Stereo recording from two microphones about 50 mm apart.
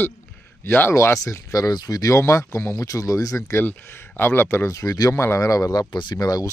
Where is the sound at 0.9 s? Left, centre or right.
Left.